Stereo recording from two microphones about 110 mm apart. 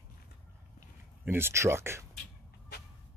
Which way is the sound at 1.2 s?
20° right (ahead or behind).